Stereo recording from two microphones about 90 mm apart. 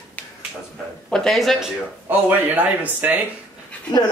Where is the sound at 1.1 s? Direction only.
5° left (ahead or behind).